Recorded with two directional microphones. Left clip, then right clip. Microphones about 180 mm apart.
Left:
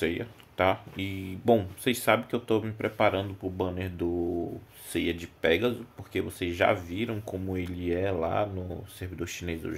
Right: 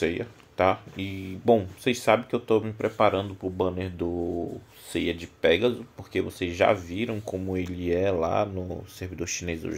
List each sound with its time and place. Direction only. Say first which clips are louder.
0.0 s speech: right 3 dB; 15° right (ahead or behind)